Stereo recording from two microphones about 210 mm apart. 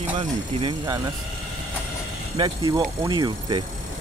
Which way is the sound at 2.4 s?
20° right (ahead or behind).